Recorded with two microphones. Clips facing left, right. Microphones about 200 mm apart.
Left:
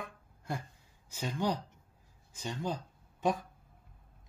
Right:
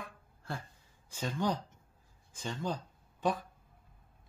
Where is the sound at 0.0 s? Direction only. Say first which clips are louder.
Left 3 dB; 15° left (ahead or behind).